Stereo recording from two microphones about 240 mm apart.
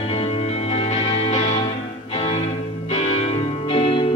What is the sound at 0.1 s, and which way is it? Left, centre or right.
Music, left.